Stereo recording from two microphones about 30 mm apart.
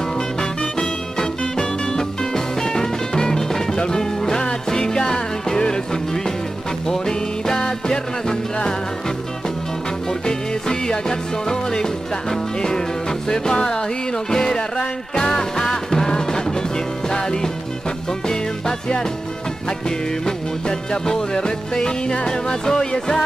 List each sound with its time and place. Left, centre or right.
0.4 s music: left
10.2 s music: left
20.2 s music: left